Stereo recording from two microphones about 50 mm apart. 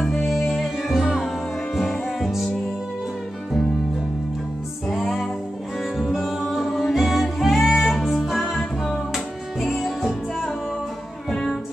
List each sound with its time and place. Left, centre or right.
0.0 s music: centre
0.3 s music: centre
1.8 s music: centre
4.8 s music: centre
8.5 s music: centre
9.1 s music: centre